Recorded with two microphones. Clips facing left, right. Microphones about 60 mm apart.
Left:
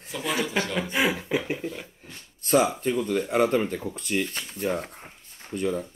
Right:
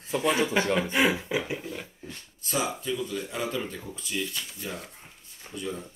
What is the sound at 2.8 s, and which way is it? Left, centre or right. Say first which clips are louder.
Speech: left 6 dB; left.